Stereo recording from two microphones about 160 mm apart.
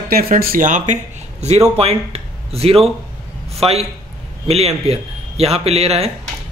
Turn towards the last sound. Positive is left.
turn(degrees=-40)  # may be behind; listen again after turning